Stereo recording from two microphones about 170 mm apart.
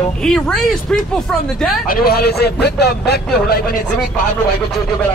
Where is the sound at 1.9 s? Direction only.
60° left (ahead or behind).